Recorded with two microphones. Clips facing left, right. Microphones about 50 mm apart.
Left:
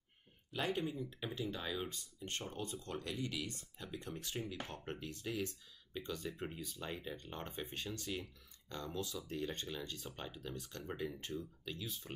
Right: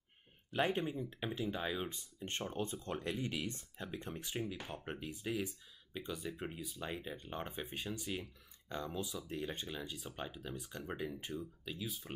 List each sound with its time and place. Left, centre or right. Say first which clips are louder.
0.5 s speech: right 3 dB; right; by 12.1 s centre